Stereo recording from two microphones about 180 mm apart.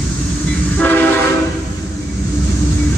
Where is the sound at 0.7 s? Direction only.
10° left (ahead or behind).